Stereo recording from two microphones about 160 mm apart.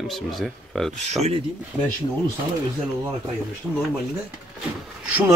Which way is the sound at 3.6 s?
5° right (ahead or behind).